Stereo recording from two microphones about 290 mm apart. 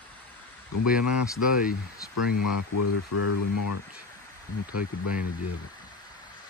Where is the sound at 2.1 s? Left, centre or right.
Left.